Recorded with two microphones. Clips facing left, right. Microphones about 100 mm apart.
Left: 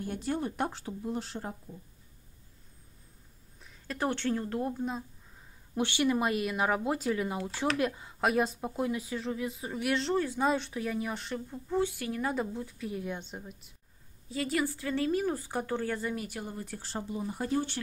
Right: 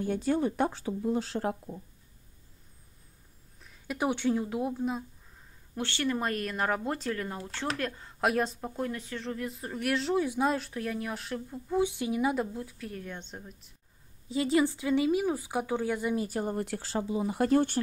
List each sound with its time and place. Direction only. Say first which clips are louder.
1.3 s speech: right 8 dB; 80° right
3.8 s speech: right 3 dB; 10° right (ahead or behind)
5.8 s speech: left 3 dB; 15° left (ahead or behind); by 11.8 s centre (ahead or behind)
11.8 s speech: right 5 dB; 20° right (ahead or behind)
12.2 s speech: right 2 dB; 5° right (ahead or behind)
14.3 s speech: right 5 dB; 20° right (ahead or behind)
16.2 s speech: right 7 dB; 40° right (ahead or behind)
16.5 s speech: right 6 dB; 80° right
17.5 s speech: right 6 dB; 55° right (ahead or behind)